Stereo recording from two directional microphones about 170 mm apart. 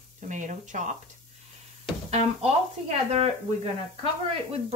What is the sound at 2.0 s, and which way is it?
Speech, 40° right (ahead or behind).